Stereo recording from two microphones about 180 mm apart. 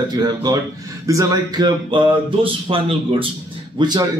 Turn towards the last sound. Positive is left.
turn(degrees=-25)  # may be behind; listen again after turning